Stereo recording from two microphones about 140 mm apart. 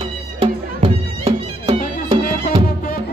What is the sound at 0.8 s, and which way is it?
Music, 45° right (ahead or behind).